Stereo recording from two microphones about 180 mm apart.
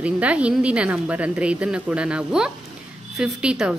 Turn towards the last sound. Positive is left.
turn(degrees=-5)  # may be behind; listen again after turning